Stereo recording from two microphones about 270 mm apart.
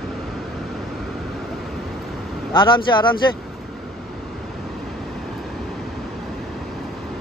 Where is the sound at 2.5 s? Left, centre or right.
Centre.